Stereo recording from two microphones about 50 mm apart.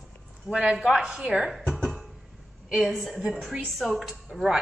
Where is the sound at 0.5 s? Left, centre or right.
Centre.